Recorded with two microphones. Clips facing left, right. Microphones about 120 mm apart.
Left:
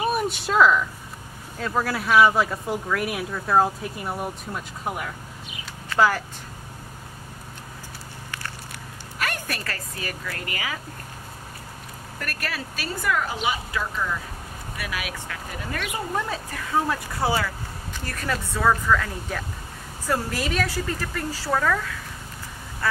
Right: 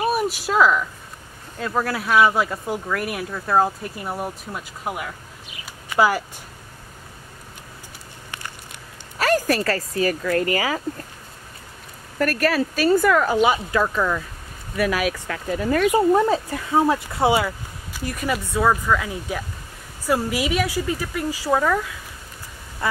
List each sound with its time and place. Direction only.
0.1 s a sound: 5° right (ahead or behind)
1.6 s speech: centre (ahead or behind)
9.2 s speech: 35° right (ahead or behind)
12.2 s speech: 45° right (ahead or behind); by 14.2 s 65° right (ahead or behind)
14.8 s speech: 45° right (ahead or behind)
16.3 s speech: 25° right (ahead or behind)